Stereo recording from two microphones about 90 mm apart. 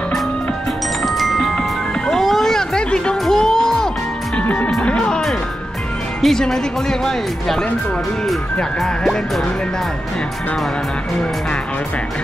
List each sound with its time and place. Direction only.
1.0 s chime: centre (ahead or behind)
2.0 s music: 5° left (ahead or behind)
6.2 s speech: 5° left (ahead or behind)